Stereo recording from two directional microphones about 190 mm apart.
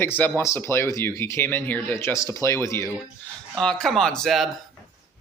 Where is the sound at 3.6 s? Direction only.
5° left (ahead or behind).